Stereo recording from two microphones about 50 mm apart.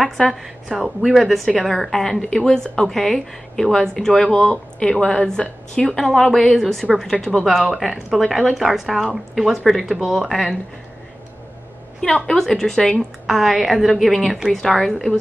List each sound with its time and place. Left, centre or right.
0.3 s a woman's voice: centre; by 5.9 s left
5.9 s a woman's voice: centre
7.3 s speech: centre
12.3 s a woman's voice: centre
13.3 s speech: centre